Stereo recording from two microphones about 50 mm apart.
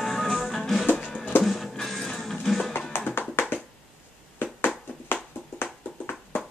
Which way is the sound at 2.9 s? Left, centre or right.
Left.